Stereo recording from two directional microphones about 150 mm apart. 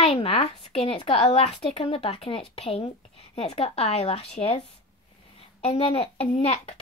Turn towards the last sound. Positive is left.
turn(degrees=45)  # may be behind; listen again after turning